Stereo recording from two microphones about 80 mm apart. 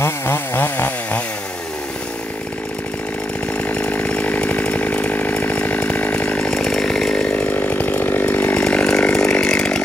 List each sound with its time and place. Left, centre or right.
0.0 s chainsaw: left
3.6 s chainsaw: centre